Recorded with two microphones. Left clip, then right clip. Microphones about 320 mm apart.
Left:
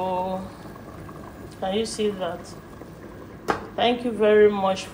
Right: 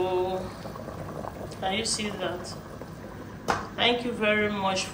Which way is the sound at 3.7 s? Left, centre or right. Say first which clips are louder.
Left 3 dB; centre.